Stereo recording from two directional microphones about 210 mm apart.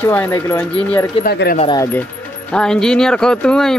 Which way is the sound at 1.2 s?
50° left (ahead or behind).